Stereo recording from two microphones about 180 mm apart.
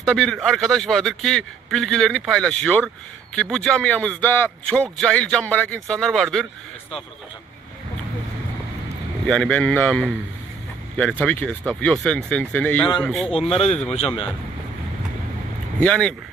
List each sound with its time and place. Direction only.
0.0 s a man's voice: centre (ahead or behind)
9.2 s a man's voice: 5° left (ahead or behind)
13.5 s speech: 35° left (ahead or behind)
15.8 s a man's voice: 5° left (ahead or behind)